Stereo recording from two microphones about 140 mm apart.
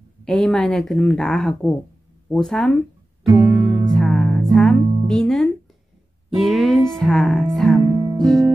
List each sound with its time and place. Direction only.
0.2 s speech: 5° left (ahead or behind)
3.5 s music: centre (ahead or behind)
8.0 s music: 30° right (ahead or behind)